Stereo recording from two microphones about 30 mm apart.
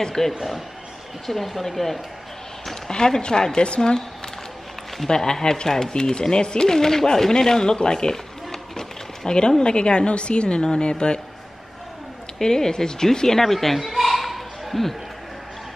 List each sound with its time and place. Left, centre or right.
0.0 s speech: centre
2.9 s speech: left
5.0 s speech: centre
6.7 s speech: centre
7.7 s a sound: left
9.6 s a woman's voice: left
12.4 s speech: centre
13.4 s a sound: centre